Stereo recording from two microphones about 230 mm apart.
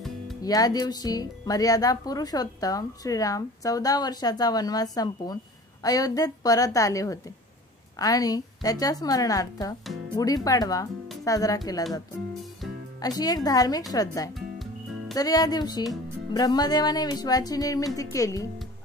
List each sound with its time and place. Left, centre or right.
0.4 s speech: centre
13.0 s speech: centre